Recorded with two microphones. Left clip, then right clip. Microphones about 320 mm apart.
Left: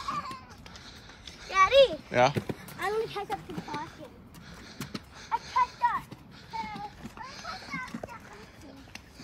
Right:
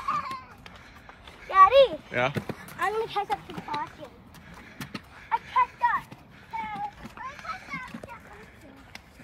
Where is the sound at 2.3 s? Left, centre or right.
Centre.